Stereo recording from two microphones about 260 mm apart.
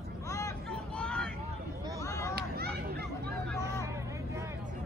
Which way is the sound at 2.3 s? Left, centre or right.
Right.